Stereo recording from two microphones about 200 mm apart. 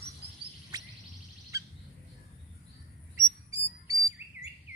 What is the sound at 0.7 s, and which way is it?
Music, 20° right (ahead or behind).